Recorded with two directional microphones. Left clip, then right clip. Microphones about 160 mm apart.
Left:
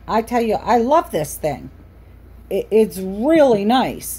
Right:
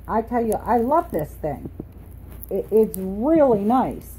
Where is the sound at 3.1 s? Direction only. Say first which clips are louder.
Left 4 dB; 35° left (ahead or behind).